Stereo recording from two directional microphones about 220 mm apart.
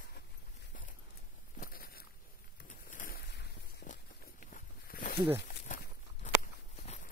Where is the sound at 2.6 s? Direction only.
35° left (ahead or behind).